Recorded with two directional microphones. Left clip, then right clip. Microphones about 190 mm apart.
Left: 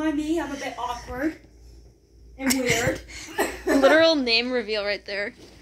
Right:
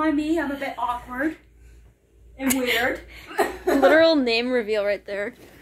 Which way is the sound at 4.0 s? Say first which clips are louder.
Right 1 dB; 20° right (ahead or behind).